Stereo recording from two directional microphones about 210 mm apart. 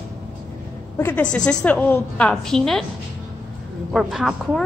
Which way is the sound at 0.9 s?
10° left (ahead or behind).